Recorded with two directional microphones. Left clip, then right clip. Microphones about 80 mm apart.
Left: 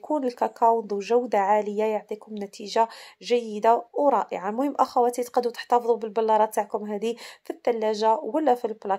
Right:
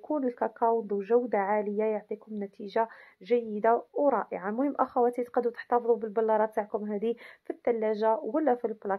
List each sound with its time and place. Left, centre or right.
0.1 s speech: left